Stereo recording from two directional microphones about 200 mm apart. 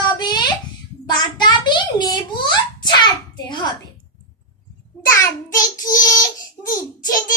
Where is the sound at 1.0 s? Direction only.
20° left (ahead or behind).